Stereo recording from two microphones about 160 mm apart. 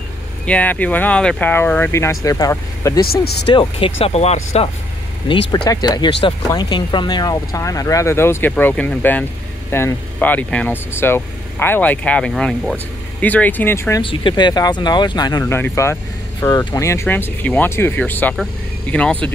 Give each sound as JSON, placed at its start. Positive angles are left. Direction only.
{"t": 0.5, "sound": "speech", "side_deg": 10}
{"t": 3.0, "sound": "speech", "side_deg": 80}
{"t": 3.5, "sound": "speech", "side_deg": 35}
{"t": 5.5, "sound": "speech", "side_deg": 25}
{"t": 14.0, "sound": "speech", "side_deg": 30}